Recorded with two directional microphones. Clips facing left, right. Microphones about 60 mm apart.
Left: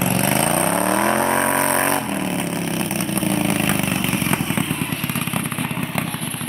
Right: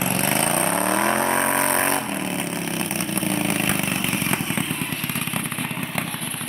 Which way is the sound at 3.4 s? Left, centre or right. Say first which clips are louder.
Left 3 dB; left.